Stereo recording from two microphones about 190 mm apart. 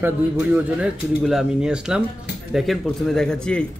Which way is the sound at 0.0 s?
10° right (ahead or behind).